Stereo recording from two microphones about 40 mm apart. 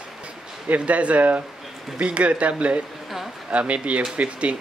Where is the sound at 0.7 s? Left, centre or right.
Right.